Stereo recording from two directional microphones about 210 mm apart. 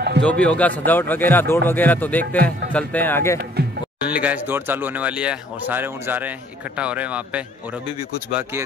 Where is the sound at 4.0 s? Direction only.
5° right (ahead or behind).